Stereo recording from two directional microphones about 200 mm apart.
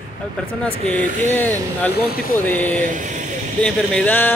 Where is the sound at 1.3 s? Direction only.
10° left (ahead or behind).